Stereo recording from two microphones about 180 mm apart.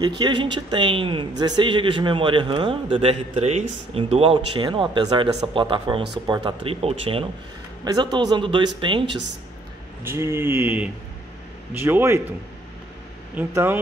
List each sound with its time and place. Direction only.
0.2 s a man's voice: 25° right (ahead or behind)
10.0 s speech: 15° right (ahead or behind)
13.4 s speech: 15° right (ahead or behind)